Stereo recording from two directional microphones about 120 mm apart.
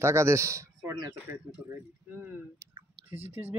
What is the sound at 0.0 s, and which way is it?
Speech, 20° right (ahead or behind).